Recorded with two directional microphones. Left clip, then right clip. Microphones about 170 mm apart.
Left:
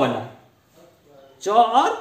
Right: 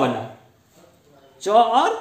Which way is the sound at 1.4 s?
25° right (ahead or behind).